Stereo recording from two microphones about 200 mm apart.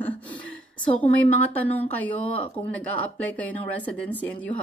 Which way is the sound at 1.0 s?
30° left (ahead or behind).